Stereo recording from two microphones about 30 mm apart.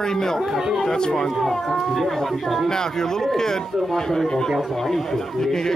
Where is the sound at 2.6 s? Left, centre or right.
Centre.